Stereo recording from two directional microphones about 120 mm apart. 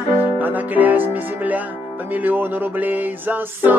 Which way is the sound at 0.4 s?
15° right (ahead or behind).